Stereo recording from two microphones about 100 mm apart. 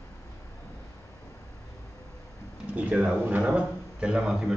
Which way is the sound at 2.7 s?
15° right (ahead or behind).